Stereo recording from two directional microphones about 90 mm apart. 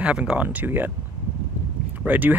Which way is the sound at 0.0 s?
15° right (ahead or behind).